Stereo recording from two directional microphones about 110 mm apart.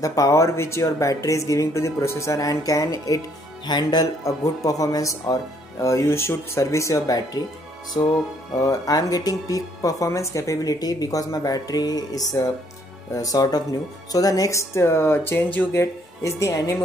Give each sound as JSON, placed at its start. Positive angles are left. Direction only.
{"t": 0.0, "sound": "speech", "side_deg": 30}
{"t": 8.5, "sound": "speech", "side_deg": 30}